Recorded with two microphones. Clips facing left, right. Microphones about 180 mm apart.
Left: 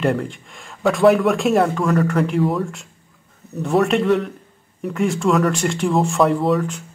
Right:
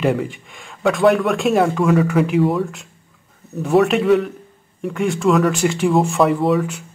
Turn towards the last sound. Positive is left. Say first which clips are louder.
# right 1 dB
turn(degrees=-5)  # may be behind; listen again after turning